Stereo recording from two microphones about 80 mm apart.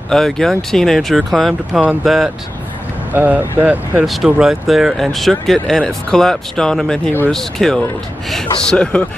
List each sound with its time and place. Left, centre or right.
0.1 s speech: centre
3.1 s speech: right
4.0 s speech: centre